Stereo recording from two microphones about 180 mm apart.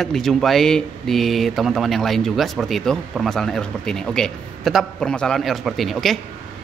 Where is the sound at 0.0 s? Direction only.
Centre (ahead or behind).